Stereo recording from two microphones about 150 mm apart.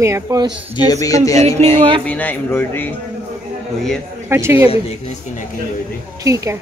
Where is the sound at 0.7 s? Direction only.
25° left (ahead or behind).